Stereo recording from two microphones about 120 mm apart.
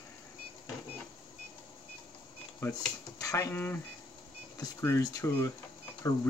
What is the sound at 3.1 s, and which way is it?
Speech, 25° left (ahead or behind).